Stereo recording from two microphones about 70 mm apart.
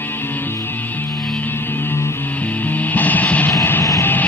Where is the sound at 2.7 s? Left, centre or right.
Left.